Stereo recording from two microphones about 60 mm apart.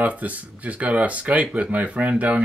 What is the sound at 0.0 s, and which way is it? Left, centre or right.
Speech, right.